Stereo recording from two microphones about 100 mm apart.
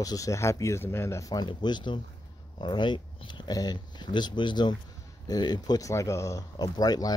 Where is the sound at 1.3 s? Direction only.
45° left (ahead or behind).